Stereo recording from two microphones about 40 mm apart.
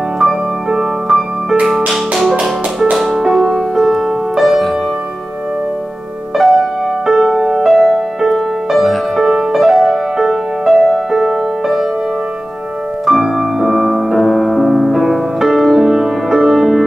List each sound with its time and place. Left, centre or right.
0.7 s music: centre
6.3 s music: centre
13.0 s music: centre